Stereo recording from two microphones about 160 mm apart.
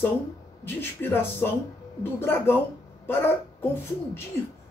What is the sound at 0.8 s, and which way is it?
Speech, 15° left (ahead or behind).